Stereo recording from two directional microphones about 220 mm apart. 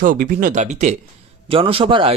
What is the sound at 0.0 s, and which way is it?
Speech, 35° right (ahead or behind).